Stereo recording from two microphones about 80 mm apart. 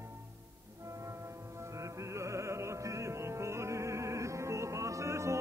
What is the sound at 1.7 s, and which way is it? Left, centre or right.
Music, right.